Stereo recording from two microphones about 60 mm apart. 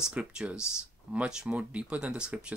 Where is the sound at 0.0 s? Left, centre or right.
Centre.